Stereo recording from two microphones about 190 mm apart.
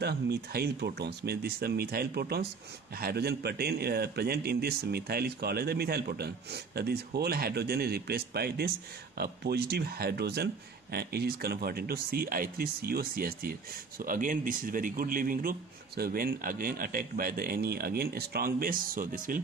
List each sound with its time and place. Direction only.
0.0 s a man's voice: 55° right (ahead or behind)